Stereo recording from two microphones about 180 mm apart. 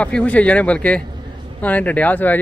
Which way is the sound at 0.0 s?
5° left (ahead or behind).